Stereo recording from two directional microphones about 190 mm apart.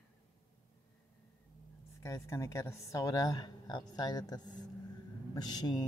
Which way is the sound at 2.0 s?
15° left (ahead or behind).